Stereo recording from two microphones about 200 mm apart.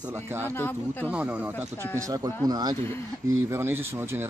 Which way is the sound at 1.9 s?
20° right (ahead or behind).